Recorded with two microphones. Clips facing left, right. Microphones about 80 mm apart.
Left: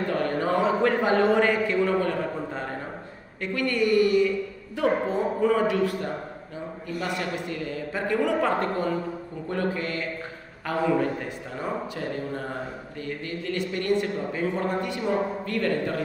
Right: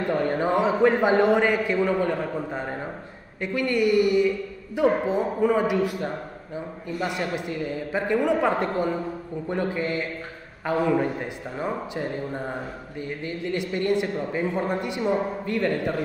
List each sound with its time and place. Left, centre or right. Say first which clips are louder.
0.0 s a man's voice: right 2 dB; centre